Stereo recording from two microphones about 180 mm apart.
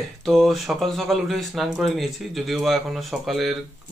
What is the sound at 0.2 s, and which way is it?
Speech, centre (ahead or behind).